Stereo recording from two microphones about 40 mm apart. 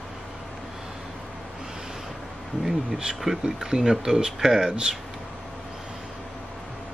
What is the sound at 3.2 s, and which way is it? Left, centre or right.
Speech, centre.